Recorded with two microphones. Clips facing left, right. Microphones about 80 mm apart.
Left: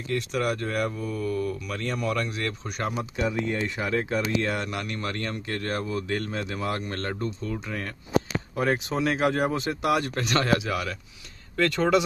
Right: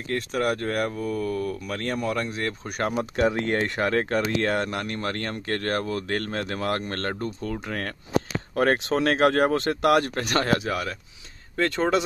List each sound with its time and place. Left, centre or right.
0.1 s speech: right
2.0 s speech: right
3.3 s speech: right
11.5 s speech: right